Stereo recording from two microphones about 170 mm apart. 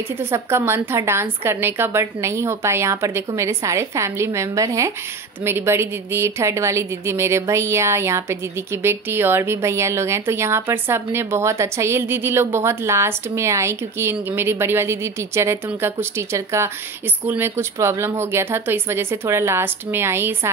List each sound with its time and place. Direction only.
0.2 s a woman's voice: 15° right (ahead or behind)